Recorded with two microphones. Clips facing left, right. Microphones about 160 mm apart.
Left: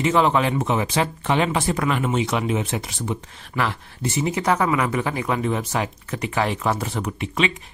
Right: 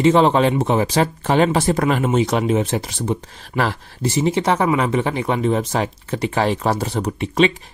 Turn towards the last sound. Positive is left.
turn(degrees=-35)  # may be behind; listen again after turning